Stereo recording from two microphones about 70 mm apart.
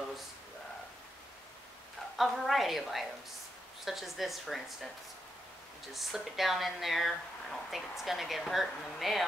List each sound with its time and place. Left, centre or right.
2.1 s a woman's voice: centre
5.9 s a woman's voice: centre